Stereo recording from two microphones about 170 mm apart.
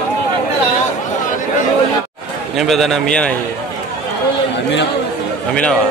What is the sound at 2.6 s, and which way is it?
Speech, centre (ahead or behind).